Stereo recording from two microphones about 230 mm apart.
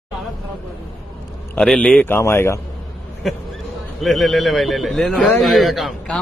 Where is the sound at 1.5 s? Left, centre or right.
Centre.